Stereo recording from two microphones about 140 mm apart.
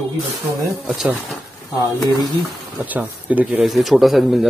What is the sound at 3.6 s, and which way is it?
Speech, centre (ahead or behind).